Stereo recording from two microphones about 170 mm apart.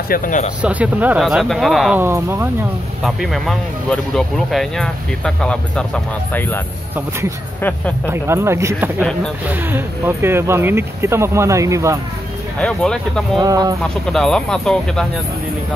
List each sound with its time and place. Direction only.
0.1 s speech: 50° left (ahead or behind)
0.6 s speech: 10° right (ahead or behind)
2.0 s speech: 15° right (ahead or behind)
3.0 s speech: centre (ahead or behind)
8.1 s speech: 15° right (ahead or behind)
12.5 s speech: 5° left (ahead or behind)
13.4 s speech: 20° right (ahead or behind)
14.1 s speech: 5° left (ahead or behind)